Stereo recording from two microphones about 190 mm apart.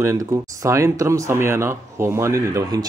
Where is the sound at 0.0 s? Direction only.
15° right (ahead or behind).